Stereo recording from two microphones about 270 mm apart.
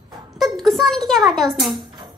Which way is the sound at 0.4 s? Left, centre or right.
Centre.